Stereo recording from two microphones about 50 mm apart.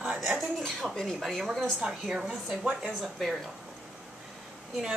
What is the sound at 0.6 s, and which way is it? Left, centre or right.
Speech, centre.